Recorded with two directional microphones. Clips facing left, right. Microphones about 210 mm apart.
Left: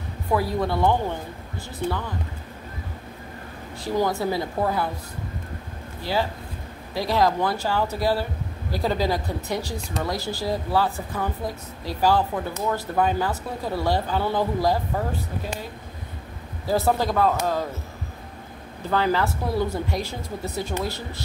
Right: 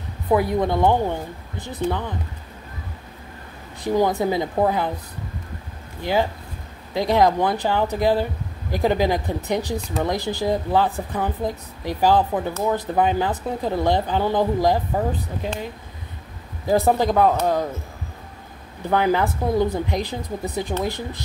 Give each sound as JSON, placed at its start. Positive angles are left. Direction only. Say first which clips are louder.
{"t": 0.3, "sound": "speech", "louder": "right 4 dB", "side_deg": -20}
{"t": 3.8, "sound": "speech", "louder": "right 4 dB", "side_deg": -20}
{"t": 6.9, "sound": "speech", "louder": "right 4 dB", "side_deg": -20}
{"t": 16.6, "sound": "speech", "louder": "right 4 dB", "side_deg": -15}
{"t": 18.9, "sound": "speech", "louder": "right 3 dB", "side_deg": -20}